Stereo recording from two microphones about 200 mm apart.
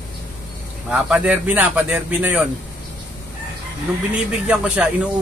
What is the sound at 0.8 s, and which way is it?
Speech, 5° right (ahead or behind).